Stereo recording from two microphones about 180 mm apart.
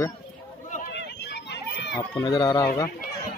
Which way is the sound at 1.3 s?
70° left (ahead or behind).